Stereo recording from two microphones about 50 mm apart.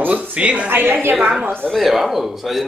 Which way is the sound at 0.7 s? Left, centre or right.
Right.